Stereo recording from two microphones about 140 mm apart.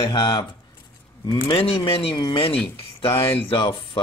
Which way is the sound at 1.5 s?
40° left (ahead or behind).